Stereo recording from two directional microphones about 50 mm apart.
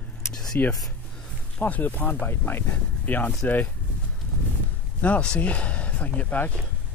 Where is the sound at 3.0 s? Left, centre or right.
Left.